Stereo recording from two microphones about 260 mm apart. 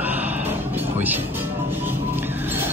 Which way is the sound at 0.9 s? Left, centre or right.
Centre.